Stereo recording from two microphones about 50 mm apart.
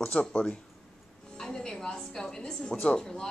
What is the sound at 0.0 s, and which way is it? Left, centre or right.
Speech, centre.